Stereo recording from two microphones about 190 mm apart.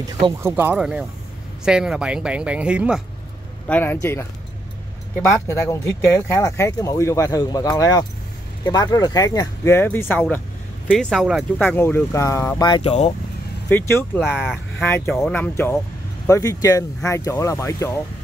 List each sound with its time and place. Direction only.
0.0 s speech: 15° right (ahead or behind)
3.6 s speech: 10° left (ahead or behind)
5.3 s speech: 15° left (ahead or behind); by 11.6 s centre (ahead or behind)
11.6 s speech: 10° left (ahead or behind)
13.7 s speech: 10° left (ahead or behind)